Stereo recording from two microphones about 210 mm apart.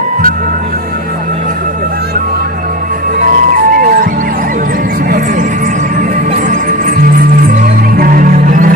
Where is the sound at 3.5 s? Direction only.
40° right (ahead or behind).